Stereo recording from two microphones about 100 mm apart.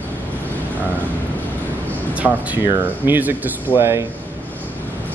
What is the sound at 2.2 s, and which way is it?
Speech, 20° right (ahead or behind).